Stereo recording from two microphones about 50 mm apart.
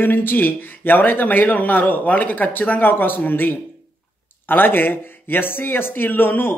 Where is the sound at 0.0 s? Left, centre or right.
Left.